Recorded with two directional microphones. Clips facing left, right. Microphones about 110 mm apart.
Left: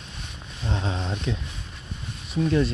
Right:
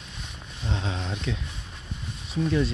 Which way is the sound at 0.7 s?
45° left (ahead or behind).